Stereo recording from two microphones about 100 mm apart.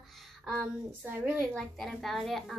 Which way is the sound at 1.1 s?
20° right (ahead or behind).